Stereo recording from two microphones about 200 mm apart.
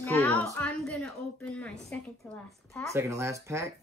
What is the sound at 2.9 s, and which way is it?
Speech, 15° right (ahead or behind).